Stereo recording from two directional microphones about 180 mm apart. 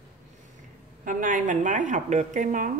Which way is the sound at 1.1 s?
45° right (ahead or behind).